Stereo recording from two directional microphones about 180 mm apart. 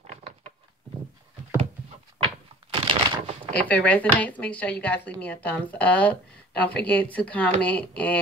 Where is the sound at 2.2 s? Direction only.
35° right (ahead or behind).